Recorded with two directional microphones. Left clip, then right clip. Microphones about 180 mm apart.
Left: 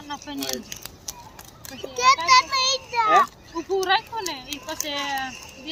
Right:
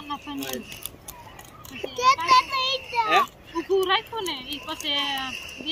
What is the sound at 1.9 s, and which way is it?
A child's voice, 25° right (ahead or behind).